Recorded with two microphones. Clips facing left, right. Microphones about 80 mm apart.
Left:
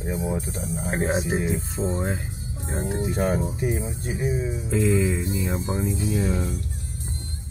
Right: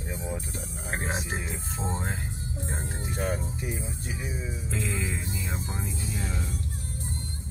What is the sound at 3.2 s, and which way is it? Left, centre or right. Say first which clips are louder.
Speech: left 6 dB; left.